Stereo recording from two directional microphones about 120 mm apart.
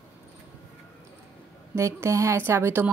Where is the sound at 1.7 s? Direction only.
25° right (ahead or behind).